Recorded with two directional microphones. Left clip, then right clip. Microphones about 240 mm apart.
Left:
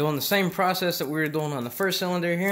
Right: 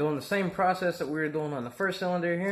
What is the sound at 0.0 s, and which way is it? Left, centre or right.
Speech, left.